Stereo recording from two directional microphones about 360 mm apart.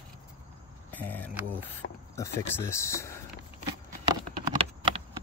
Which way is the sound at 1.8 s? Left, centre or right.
Left.